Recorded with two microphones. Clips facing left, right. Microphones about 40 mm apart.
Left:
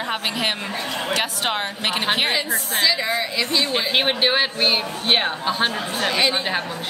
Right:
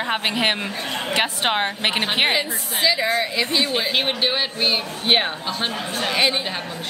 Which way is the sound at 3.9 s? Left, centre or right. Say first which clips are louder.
Left 5 dB; centre.